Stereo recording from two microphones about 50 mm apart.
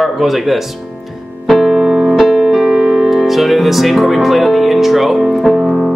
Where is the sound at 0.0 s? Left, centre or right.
Centre.